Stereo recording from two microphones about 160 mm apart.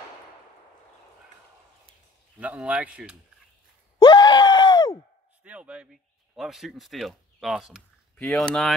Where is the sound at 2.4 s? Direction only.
10° right (ahead or behind).